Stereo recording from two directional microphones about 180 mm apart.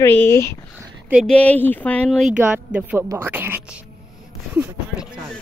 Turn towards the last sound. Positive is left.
turn(degrees=-10)  # may be behind; listen again after turning